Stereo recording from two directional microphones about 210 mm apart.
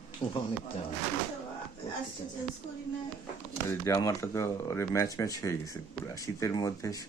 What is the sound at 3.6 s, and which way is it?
Speech, 15° left (ahead or behind).